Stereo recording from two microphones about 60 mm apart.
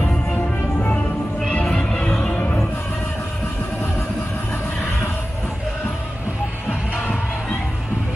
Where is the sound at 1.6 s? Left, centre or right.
Centre.